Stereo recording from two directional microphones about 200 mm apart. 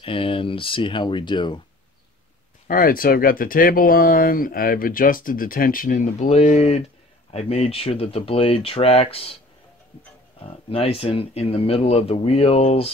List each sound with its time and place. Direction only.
0.0 s speech: 25° left (ahead or behind)
2.7 s speech: 45° left (ahead or behind); by 9.4 s 30° left (ahead or behind)
10.7 s speech: 30° left (ahead or behind)